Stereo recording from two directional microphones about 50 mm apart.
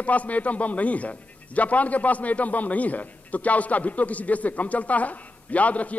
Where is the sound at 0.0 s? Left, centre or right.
Left.